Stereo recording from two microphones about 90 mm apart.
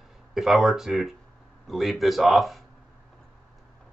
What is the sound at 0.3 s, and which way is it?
Speech, 5° right (ahead or behind).